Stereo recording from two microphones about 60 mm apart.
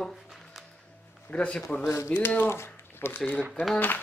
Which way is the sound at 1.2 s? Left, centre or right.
Centre.